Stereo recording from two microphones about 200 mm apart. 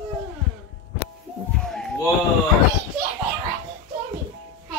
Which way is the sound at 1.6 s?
Centre (ahead or behind).